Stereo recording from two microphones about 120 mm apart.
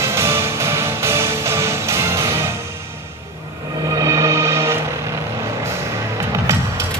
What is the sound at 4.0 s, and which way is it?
Music, 25° right (ahead or behind).